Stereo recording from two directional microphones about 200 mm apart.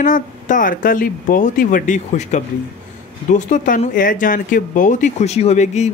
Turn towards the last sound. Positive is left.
turn(degrees=35)  # may be behind; listen again after turning